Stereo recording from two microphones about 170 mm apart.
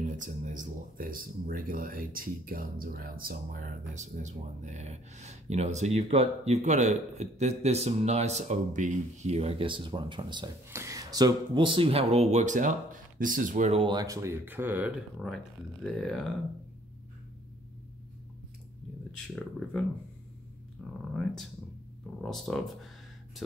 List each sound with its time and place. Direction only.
0.0 s speech: 50° right (ahead or behind); by 15.2 s 10° right (ahead or behind)
15.2 s speech: 5° left (ahead or behind)
19.1 s speech: 5° left (ahead or behind)
22.2 s speech: centre (ahead or behind)